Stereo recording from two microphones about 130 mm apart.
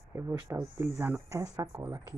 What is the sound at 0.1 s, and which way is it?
Speech, 25° right (ahead or behind).